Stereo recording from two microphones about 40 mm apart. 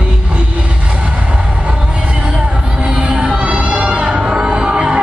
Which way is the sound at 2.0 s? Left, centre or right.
Right.